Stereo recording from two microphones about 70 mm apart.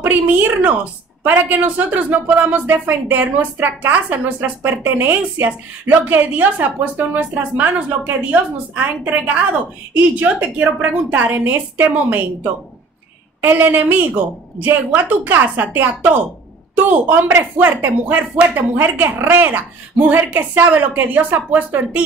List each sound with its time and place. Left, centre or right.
0.0 s speech: right
13.4 s speech: right